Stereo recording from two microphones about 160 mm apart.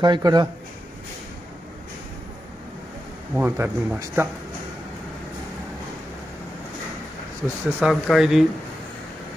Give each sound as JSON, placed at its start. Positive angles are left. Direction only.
{"t": 0.0, "sound": "speech", "side_deg": -25}
{"t": 3.3, "sound": "speech", "side_deg": -15}
{"t": 7.4, "sound": "speech", "side_deg": -5}